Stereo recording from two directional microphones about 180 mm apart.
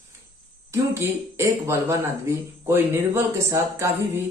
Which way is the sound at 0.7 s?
15° right (ahead or behind).